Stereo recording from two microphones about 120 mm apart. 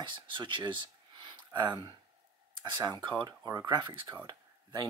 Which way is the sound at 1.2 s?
40° right (ahead or behind).